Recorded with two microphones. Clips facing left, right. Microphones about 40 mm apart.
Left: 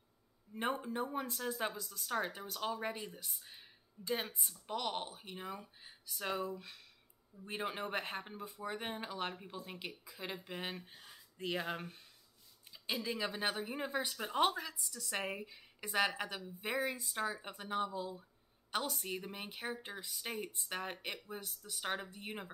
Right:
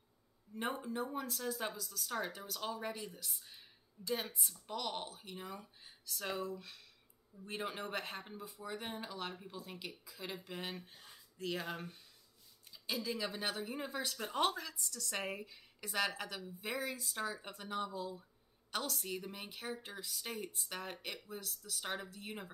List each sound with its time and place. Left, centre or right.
0.6 s speech: centre
3.4 s a sound: centre
4.4 s speech: centre
4.6 s speech: centre